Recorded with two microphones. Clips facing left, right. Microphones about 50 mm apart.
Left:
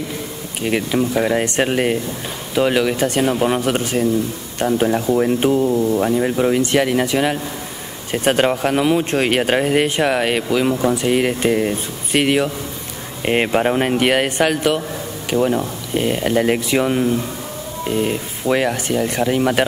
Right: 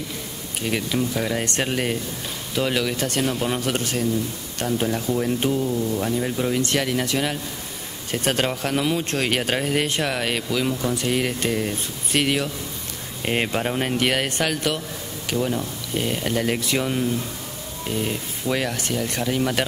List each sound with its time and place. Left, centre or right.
0.6 s speech: left